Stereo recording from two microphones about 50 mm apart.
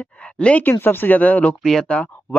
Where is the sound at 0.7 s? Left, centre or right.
Left.